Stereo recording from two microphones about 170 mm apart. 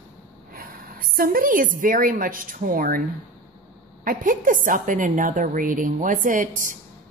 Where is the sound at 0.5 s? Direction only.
55° right (ahead or behind).